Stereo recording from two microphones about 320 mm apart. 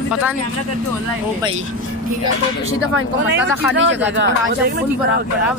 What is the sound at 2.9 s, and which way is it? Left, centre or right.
Speech, right.